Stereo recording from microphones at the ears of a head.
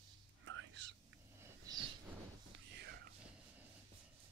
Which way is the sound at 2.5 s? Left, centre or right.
Right.